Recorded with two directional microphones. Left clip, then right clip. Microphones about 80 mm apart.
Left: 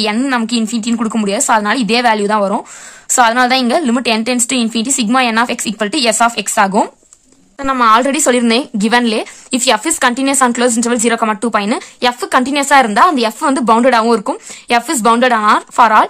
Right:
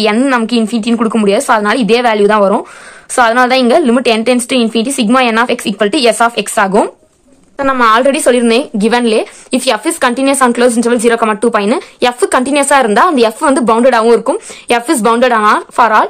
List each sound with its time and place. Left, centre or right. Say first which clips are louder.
0.0 s a woman's voice: right 5 dB; left
7.7 s a woman's voice: right 1 dB; left
12.0 s a woman's voice: right 2 dB; centre; by 16.1 s left